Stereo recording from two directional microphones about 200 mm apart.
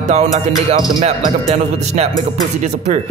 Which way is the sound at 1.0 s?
35° right (ahead or behind).